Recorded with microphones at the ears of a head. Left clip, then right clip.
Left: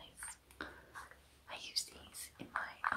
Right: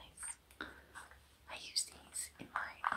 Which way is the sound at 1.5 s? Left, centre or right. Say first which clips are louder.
Even; centre.